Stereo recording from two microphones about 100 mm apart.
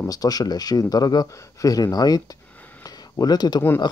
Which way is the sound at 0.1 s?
40° left (ahead or behind).